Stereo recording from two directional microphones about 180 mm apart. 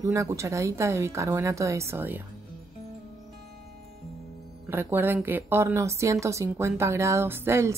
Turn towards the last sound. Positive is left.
turn(degrees=-15)  # may be behind; listen again after turning